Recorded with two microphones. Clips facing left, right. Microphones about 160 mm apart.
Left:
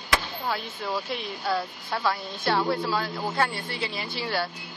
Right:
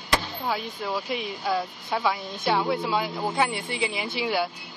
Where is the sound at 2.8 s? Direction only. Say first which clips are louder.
Right 2 dB; 15° right (ahead or behind).